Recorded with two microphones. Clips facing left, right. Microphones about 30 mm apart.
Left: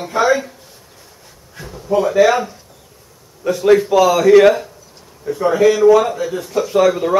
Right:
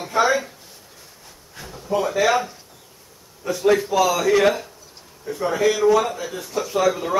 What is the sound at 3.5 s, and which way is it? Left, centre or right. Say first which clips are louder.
A man's voice: left 6 dB; centre.